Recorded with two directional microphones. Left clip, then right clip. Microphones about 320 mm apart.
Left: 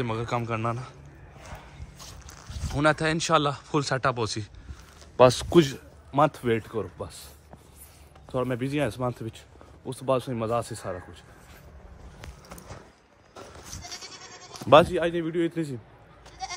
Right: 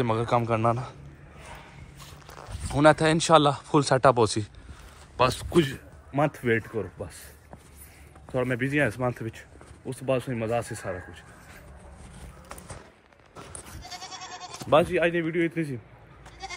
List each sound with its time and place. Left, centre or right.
0.0 s speech: centre
2.7 s speech: centre
5.1 s a man's voice: left
6.1 s speech: centre
8.3 s speech: centre
14.9 s speech: centre
16.4 s goat: left